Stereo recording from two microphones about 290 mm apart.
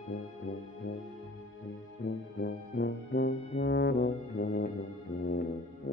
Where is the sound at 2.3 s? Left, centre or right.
Left.